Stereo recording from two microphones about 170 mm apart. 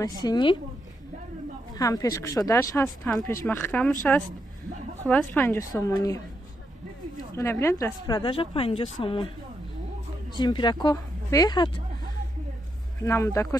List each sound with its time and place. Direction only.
0.2 s a woman's voice: 25° left (ahead or behind)
1.8 s a woman's voice: 20° left (ahead or behind)
7.3 s a woman's voice: 15° left (ahead or behind)
10.3 s a woman's voice: 25° left (ahead or behind)
13.0 s a woman's voice: 20° left (ahead or behind)